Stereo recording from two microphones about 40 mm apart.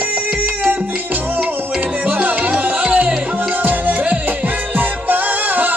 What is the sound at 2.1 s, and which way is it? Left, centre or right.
Music, right.